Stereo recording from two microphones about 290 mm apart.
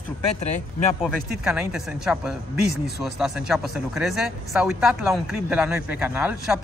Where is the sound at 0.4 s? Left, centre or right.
Left.